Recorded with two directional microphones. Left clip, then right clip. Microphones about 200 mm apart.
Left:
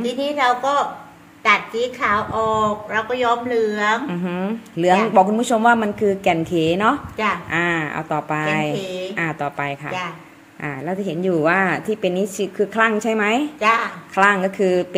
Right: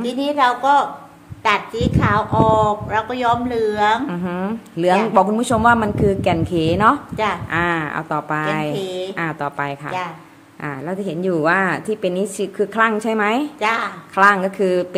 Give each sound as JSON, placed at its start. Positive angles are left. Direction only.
{"t": 0.0, "sound": "speech", "side_deg": -55}
{"t": 4.1, "sound": "a woman's voice", "side_deg": 0}
{"t": 13.6, "sound": "speech", "side_deg": -60}
{"t": 14.1, "sound": "a woman's voice", "side_deg": 5}